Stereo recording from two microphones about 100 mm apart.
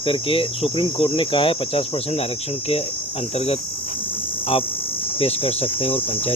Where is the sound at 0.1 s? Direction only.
70° left (ahead or behind).